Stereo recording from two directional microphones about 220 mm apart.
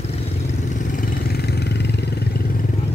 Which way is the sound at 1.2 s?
45° left (ahead or behind).